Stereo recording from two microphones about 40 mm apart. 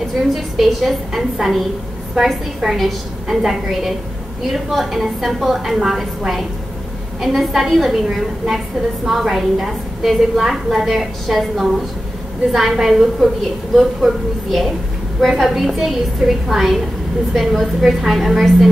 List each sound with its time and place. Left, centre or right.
0.3 s a woman's voice: centre